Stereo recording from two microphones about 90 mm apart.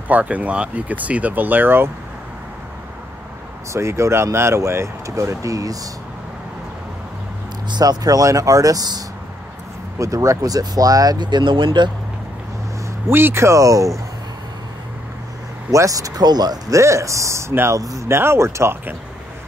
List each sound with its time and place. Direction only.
0.1 s speech: 15° right (ahead or behind)
3.7 s speech: 30° right (ahead or behind)
7.7 s speech: 45° right (ahead or behind)
13.1 s speech: 25° right (ahead or behind)
15.7 s speech: 40° right (ahead or behind)